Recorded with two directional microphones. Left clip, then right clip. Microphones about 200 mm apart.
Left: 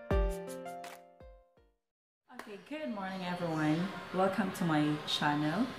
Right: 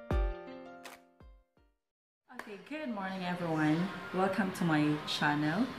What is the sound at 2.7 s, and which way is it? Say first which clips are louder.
Speech: even; centre (ahead or behind).